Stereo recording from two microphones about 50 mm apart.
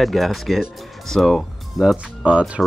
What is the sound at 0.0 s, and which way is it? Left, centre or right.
Speech, centre.